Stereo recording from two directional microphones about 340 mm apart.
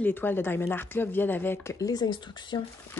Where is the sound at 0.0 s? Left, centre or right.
Centre.